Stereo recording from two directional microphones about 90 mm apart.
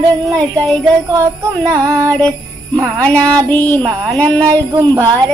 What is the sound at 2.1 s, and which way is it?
Music, 15° left (ahead or behind).